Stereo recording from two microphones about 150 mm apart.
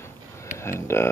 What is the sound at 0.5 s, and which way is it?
Speech, 15° left (ahead or behind).